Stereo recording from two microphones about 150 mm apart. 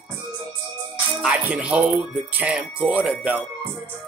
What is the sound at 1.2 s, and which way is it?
Music, 10° right (ahead or behind).